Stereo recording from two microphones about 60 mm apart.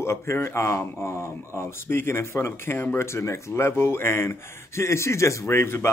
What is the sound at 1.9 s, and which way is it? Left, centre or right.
A man's voice, left.